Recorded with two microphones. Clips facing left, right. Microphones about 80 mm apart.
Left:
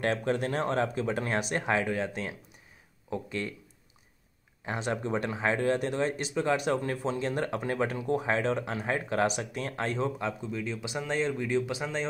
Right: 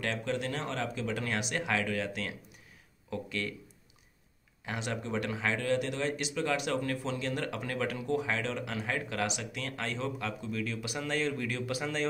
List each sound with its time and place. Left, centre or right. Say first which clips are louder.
0.0 s speech: left 5 dB; left
4.6 s speech: left 4 dB; left